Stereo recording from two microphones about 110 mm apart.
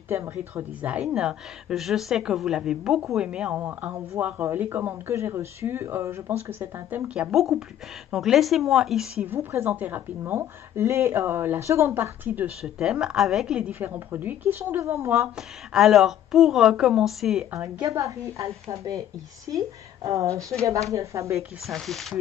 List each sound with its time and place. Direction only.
0.1 s a woman's voice: 25° right (ahead or behind)
7.2 s a woman's voice: 5° right (ahead or behind)
9.2 s a woman's voice: 20° right (ahead or behind)
12.7 s a woman's voice: 5° right (ahead or behind); by 15.2 s 25° right (ahead or behind)
15.7 s a woman's voice: centre (ahead or behind)
17.6 s a woman's voice: 30° right (ahead or behind)
21.4 s a woman's voice: centre (ahead or behind)